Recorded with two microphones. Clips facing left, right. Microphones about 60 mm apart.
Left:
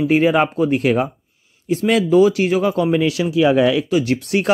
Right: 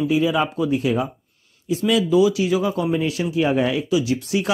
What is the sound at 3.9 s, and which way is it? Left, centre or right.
Speech, left.